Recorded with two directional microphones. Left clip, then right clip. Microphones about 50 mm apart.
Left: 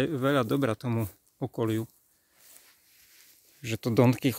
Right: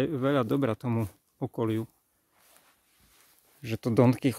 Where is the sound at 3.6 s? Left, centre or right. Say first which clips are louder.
Even; right.